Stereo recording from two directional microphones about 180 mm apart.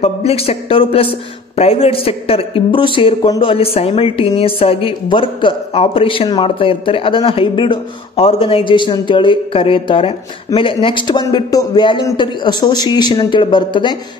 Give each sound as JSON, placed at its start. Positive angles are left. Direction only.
{"t": 0.0, "sound": "speech", "side_deg": 35}